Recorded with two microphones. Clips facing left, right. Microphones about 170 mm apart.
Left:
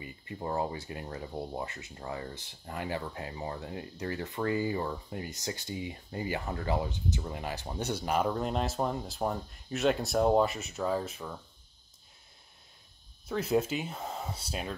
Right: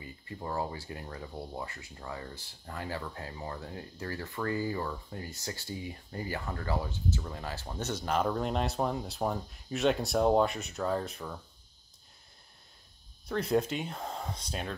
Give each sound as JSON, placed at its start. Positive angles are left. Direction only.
{"t": 0.0, "sound": "speech", "side_deg": 20}
{"t": 13.3, "sound": "speech", "side_deg": 5}